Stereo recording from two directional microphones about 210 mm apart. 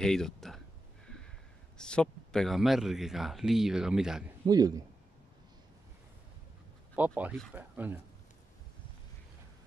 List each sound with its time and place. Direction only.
0.0 s speech: centre (ahead or behind)
1.8 s speech: 5° left (ahead or behind)
4.5 s speech: 20° right (ahead or behind)
7.0 s speech: 5° right (ahead or behind)